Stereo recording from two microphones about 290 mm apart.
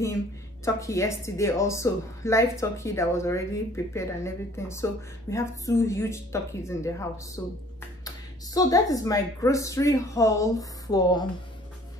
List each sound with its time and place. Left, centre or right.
0.7 s a woman's voice: centre
8.5 s a woman's voice: centre